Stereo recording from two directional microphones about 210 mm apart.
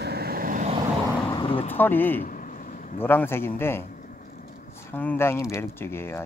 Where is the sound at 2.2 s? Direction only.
40° left (ahead or behind).